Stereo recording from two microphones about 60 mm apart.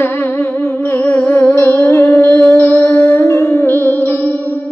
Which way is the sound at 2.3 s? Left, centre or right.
Left.